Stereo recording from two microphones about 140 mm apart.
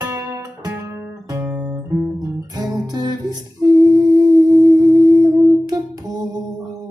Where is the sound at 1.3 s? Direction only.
10° right (ahead or behind).